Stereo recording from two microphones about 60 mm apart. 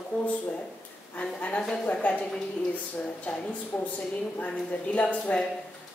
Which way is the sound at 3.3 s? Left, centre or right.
Left.